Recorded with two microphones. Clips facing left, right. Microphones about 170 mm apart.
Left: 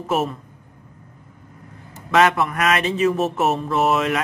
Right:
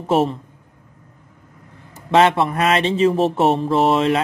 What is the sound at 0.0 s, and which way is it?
Speech, 30° right (ahead or behind).